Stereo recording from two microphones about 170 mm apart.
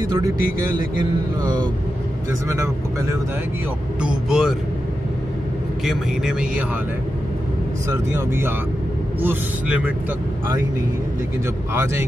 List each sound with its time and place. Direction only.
2.4 s speech: 20° right (ahead or behind)
4.0 s a man's voice: 5° right (ahead or behind)
5.9 s a man's voice: 5° right (ahead or behind)
8.1 s speech: 15° right (ahead or behind)
11.7 s speech: 15° right (ahead or behind)